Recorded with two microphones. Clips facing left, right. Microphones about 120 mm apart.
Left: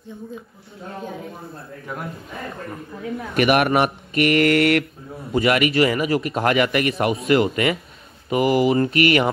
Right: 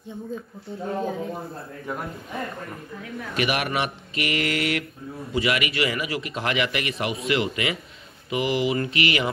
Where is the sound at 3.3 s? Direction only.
55° left (ahead or behind).